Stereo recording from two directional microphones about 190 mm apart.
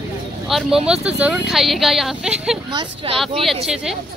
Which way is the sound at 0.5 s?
Centre (ahead or behind).